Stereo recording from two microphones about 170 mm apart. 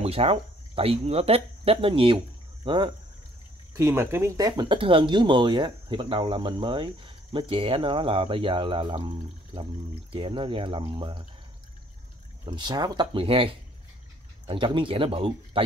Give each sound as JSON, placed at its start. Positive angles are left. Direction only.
{"t": 0.0, "sound": "speech", "side_deg": -35}
{"t": 3.7, "sound": "speech", "side_deg": -15}
{"t": 12.4, "sound": "speech", "side_deg": -25}